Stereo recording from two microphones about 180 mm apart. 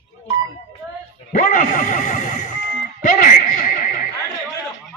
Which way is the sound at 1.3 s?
45° left (ahead or behind).